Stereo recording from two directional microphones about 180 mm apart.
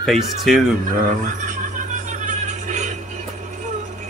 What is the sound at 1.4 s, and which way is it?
Music, 45° right (ahead or behind).